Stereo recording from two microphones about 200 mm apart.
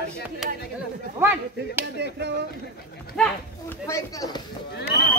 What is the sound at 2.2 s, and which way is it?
Speech, 55° right (ahead or behind).